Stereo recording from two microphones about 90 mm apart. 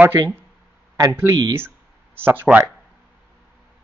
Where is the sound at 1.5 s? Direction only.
25° right (ahead or behind).